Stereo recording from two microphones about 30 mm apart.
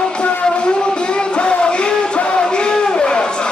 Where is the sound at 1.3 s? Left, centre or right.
Left.